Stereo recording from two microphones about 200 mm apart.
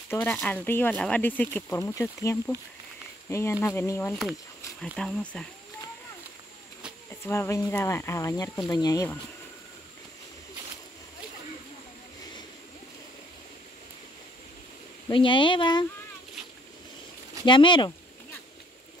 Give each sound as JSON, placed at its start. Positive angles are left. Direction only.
{"t": 0.1, "sound": "speech", "side_deg": 10}
{"t": 7.2, "sound": "speech", "side_deg": 15}
{"t": 15.0, "sound": "speech", "side_deg": 25}
{"t": 17.5, "sound": "speech", "side_deg": 25}